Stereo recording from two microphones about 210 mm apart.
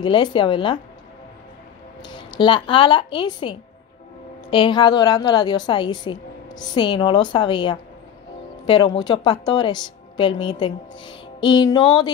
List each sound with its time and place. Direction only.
0.0 s a woman's voice: 20° left (ahead or behind)
2.0 s a woman's voice: 20° left (ahead or behind)